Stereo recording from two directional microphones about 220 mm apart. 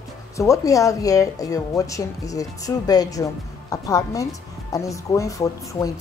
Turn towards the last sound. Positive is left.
turn(degrees=15)  # may be behind; listen again after turning